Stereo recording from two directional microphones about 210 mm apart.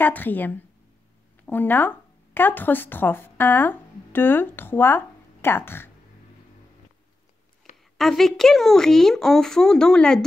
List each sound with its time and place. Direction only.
0.0 s a woman's voice: 10° left (ahead or behind)
7.7 s a sound: 35° left (ahead or behind)
8.0 s speech: centre (ahead or behind)